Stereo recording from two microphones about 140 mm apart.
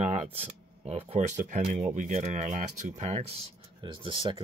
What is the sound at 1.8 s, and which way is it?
Speech, 65° right (ahead or behind).